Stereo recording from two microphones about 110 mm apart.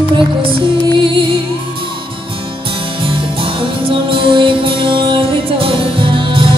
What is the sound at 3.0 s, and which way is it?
Music, 50° right (ahead or behind).